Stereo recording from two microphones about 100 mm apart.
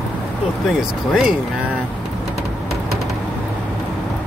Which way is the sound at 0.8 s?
5° right (ahead or behind).